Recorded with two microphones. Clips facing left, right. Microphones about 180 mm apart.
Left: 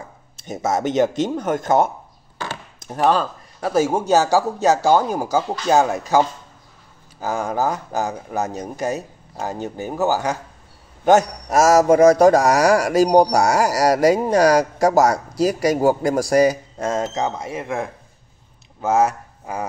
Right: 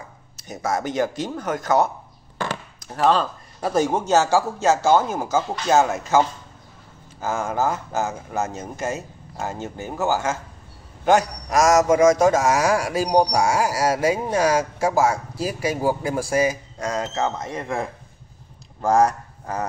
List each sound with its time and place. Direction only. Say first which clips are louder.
0.5 s a man's voice: left 4 dB; 25° left (ahead or behind)
2.9 s speech: left 1 dB; 15° left (ahead or behind)
3.2 s speech: left 1 dB; 5° left (ahead or behind)
7.2 s a man's voice: left 2 dB; 15° left (ahead or behind)